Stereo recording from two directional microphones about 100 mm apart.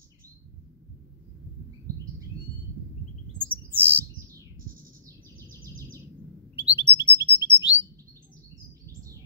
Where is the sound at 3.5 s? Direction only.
20° right (ahead or behind).